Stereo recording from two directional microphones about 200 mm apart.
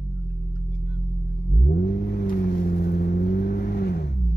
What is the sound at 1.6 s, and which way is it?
Vehicle, 50° left (ahead or behind).